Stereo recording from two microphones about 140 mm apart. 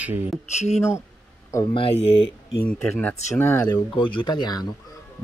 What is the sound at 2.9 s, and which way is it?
Speech, 15° left (ahead or behind).